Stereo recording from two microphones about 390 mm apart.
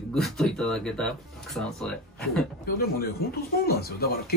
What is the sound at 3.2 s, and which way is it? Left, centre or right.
Speech, left.